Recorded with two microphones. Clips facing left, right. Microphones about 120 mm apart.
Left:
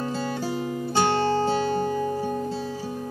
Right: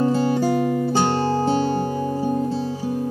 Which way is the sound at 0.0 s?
45° right (ahead or behind).